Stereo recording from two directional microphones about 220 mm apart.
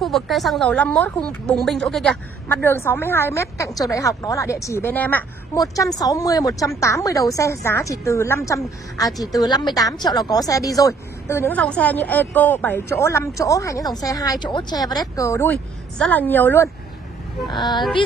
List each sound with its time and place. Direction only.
0.0 s a woman's voice: centre (ahead or behind)
17.6 s speech: 20° left (ahead or behind)